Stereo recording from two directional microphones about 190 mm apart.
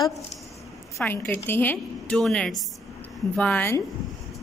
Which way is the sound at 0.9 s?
10° left (ahead or behind).